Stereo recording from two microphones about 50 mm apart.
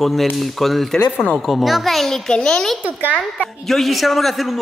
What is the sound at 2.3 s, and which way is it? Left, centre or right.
Speech, centre.